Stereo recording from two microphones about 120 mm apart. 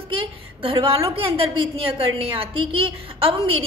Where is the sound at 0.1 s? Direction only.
45° right (ahead or behind).